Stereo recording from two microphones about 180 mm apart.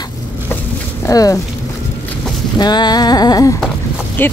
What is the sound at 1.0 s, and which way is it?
Speech, 20° left (ahead or behind).